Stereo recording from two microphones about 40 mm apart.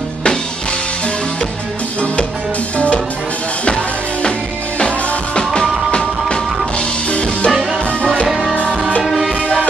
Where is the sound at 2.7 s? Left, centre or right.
Left.